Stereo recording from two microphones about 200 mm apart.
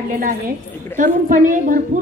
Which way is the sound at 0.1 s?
45° right (ahead or behind).